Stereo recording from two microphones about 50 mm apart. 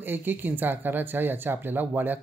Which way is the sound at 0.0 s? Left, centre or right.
Right.